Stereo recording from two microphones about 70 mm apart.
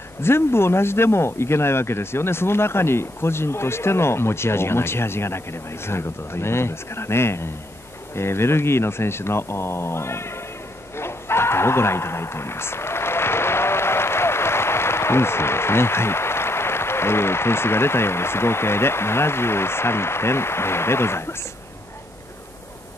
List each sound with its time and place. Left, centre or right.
0.2 s speech: left